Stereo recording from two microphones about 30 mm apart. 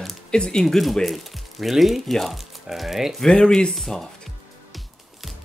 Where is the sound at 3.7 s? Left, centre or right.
Centre.